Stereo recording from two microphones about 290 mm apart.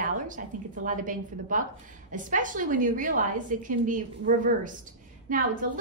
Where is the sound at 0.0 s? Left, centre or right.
Right.